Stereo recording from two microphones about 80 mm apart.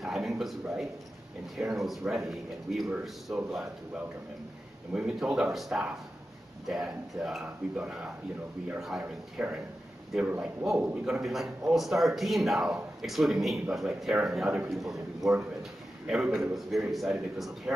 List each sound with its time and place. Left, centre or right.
0.0 s a sound: centre
1.6 s a man's voice: centre
9.4 s speech: centre
10.4 s a man's voice: centre
16.3 s a man's voice: centre
17.7 s speech: centre